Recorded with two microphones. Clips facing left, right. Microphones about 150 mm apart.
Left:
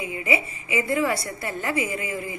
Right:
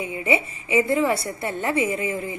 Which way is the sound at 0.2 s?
30° right (ahead or behind).